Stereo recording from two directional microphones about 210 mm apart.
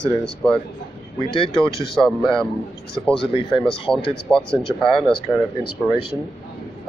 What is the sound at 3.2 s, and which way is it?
Speech, 25° left (ahead or behind).